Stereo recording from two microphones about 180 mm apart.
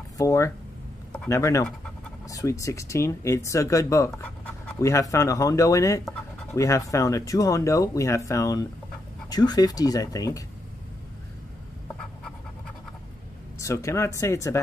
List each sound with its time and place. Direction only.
0.2 s speech: 15° left (ahead or behind)
13.6 s speech: 15° left (ahead or behind)